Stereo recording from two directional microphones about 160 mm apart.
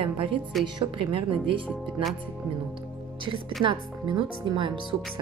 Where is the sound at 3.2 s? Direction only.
30° right (ahead or behind).